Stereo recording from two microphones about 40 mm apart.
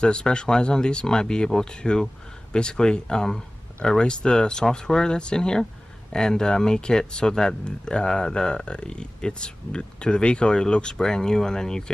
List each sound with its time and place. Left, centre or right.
0.0 s speech: left